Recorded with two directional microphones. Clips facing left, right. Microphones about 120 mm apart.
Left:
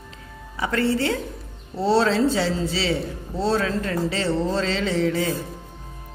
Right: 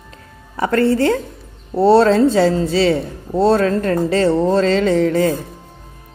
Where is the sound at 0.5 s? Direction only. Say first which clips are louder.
Right 7 dB; 50° right (ahead or behind).